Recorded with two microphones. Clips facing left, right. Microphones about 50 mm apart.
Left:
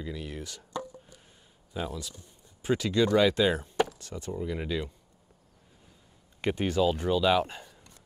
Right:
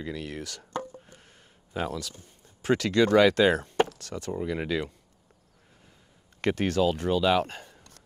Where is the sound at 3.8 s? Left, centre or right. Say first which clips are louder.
Right 3 dB; right.